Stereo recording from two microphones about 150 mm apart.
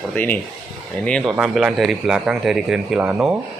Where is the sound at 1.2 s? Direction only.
5° right (ahead or behind).